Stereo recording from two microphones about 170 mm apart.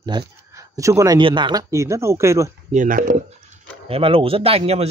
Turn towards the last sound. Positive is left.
turn(degrees=-35)  # may be behind; listen again after turning